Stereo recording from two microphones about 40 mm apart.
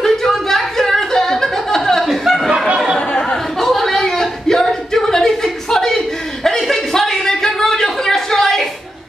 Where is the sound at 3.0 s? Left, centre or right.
Left.